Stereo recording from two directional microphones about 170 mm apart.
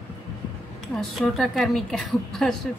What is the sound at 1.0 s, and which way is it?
A woman's voice, centre (ahead or behind).